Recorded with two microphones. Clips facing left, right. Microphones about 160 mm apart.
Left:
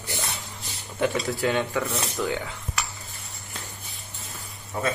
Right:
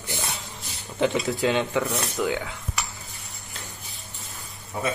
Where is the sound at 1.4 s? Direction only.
20° right (ahead or behind).